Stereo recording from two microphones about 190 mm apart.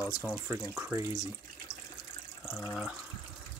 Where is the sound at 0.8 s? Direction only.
15° right (ahead or behind).